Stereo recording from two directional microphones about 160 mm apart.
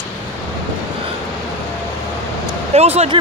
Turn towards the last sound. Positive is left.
turn(degrees=-40)  # may be behind; listen again after turning